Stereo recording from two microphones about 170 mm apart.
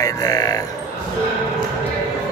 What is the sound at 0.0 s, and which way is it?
Speech, 20° left (ahead or behind).